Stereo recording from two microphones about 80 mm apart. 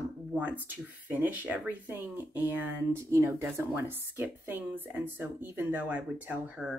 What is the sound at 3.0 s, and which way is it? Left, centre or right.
Speech, right.